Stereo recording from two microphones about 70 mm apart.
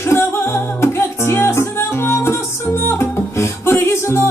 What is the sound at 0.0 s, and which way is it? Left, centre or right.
Music, left.